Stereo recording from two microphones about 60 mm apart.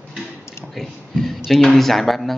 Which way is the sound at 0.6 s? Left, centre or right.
Centre.